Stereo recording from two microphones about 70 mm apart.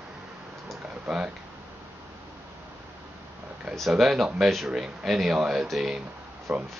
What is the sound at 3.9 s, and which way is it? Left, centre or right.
Speech, centre.